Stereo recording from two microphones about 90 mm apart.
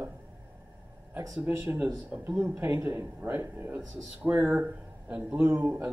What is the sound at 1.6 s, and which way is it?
A man's voice, 20° right (ahead or behind).